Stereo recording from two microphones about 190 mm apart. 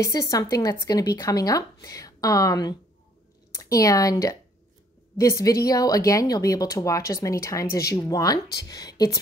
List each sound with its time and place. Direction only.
0.0 s speech: 20° left (ahead or behind)